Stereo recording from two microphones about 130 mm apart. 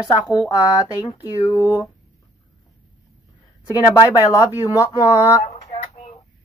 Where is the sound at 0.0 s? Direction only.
30° left (ahead or behind).